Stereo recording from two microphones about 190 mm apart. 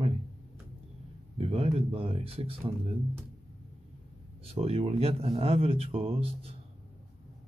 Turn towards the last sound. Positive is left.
turn(degrees=-30)  # may be behind; listen again after turning